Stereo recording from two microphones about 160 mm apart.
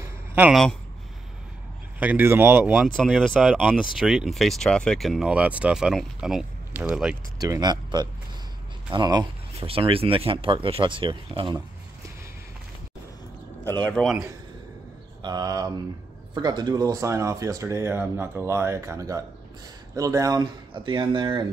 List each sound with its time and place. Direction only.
0.0 s a sound: 10° right (ahead or behind)
2.0 s speech: 10° right (ahead or behind)
3.0 s speech: centre (ahead or behind)
7.3 s speech: 20° right (ahead or behind)
13.7 s speech: 10° left (ahead or behind)
15.2 s speech: 25° right (ahead or behind)